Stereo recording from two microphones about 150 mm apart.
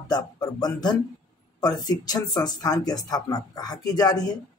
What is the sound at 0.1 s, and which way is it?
Speech, 25° left (ahead or behind).